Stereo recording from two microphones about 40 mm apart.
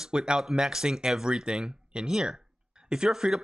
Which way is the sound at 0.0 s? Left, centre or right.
Centre.